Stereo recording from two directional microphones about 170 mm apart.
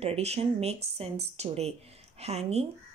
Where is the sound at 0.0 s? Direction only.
40° right (ahead or behind).